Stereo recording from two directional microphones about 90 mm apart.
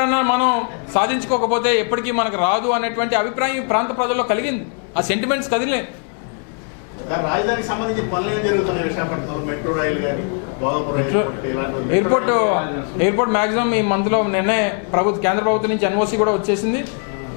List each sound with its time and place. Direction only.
0.0 s a man's voice: 15° left (ahead or behind)
7.1 s a man's voice: 20° left (ahead or behind)